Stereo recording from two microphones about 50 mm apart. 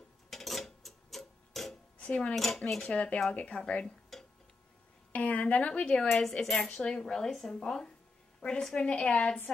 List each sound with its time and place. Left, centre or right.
0.3 s clock: centre
2.0 s speech: left
2.3 s speech: centre
2.7 s speech: centre
3.3 s a woman's voice: left
4.1 s tick-tock: centre
5.1 s a woman's voice: left
6.0 s speech: centre
6.7 s a woman's voice: centre